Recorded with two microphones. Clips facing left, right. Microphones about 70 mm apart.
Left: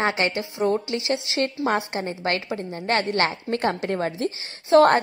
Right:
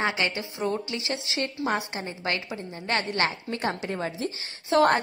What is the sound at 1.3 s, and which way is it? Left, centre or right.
Speech, left.